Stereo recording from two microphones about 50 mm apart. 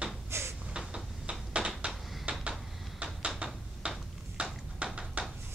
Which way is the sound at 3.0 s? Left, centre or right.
Right.